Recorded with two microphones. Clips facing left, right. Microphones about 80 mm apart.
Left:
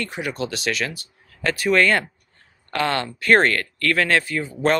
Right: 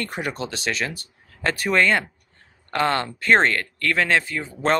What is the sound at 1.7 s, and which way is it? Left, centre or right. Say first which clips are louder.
Speech: left 1 dB; right.